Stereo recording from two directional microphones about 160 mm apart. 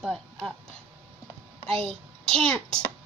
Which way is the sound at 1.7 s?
35° right (ahead or behind).